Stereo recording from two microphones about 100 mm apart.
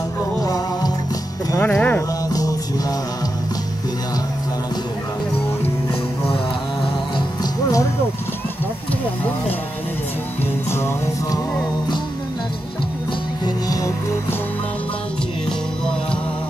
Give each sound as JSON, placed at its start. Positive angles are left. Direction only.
{"t": 0.4, "sound": "music", "side_deg": 40}
{"t": 1.6, "sound": "music", "side_deg": 15}
{"t": 2.2, "sound": "music", "side_deg": 35}